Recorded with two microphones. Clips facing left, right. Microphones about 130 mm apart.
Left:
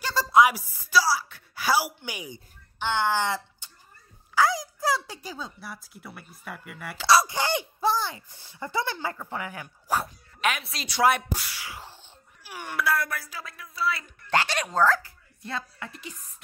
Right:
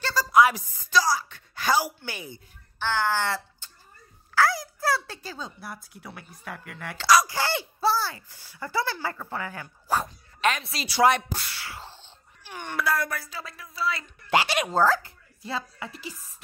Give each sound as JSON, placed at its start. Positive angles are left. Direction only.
{"t": 0.1, "sound": "a sound", "side_deg": 25}
{"t": 0.5, "sound": "a woman's voice", "side_deg": 5}
{"t": 5.4, "sound": "speech", "side_deg": 0}
{"t": 7.1, "sound": "speech", "side_deg": 25}
{"t": 14.3, "sound": "speech", "side_deg": -10}